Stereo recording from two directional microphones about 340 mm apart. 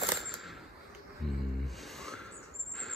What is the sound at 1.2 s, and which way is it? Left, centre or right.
Music, centre.